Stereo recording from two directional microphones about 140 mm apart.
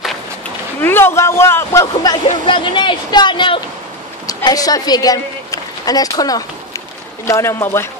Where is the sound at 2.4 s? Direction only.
35° left (ahead or behind).